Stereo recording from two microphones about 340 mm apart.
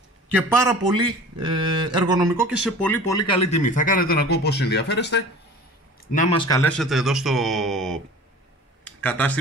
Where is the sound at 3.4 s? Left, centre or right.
Left; by 7.9 s centre.